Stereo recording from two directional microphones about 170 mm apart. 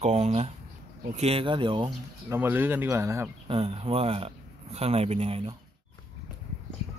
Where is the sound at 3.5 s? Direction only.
35° right (ahead or behind).